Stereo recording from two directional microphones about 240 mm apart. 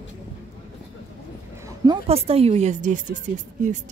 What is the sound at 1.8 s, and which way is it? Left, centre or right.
Speech, right.